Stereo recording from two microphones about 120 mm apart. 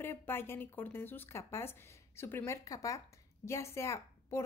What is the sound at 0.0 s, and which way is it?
A woman's voice, 20° left (ahead or behind).